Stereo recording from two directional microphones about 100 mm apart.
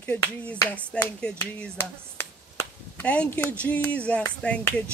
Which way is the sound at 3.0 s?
15° left (ahead or behind).